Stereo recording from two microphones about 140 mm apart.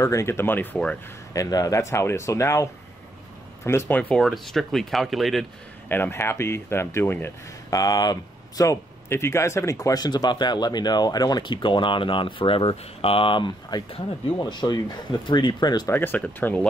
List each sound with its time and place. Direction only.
0.0 s speech: 20° left (ahead or behind)
1.3 s speech: 25° left (ahead or behind); by 5.5 s centre (ahead or behind)
5.9 s speech: 15° left (ahead or behind); by 15.9 s 30° left (ahead or behind)
15.9 s speech: 15° left (ahead or behind)